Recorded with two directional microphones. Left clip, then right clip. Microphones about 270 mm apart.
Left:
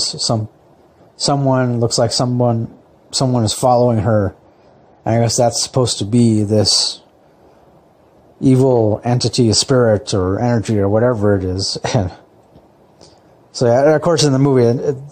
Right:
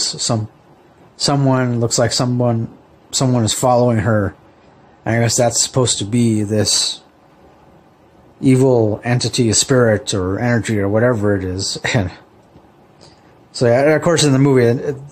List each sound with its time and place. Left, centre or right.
0.0 s speech: centre
8.4 s speech: centre
13.7 s speech: centre